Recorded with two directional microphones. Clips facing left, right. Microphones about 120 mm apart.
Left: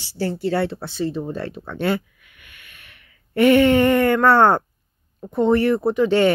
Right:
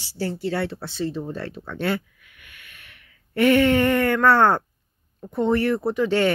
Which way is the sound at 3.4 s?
20° left (ahead or behind).